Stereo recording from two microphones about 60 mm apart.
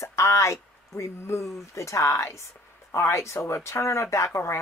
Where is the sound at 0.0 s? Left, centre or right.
Left.